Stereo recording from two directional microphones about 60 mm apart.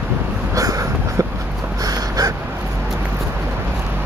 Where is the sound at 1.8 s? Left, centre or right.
Right.